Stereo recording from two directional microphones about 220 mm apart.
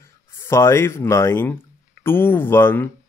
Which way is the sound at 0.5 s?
10° left (ahead or behind).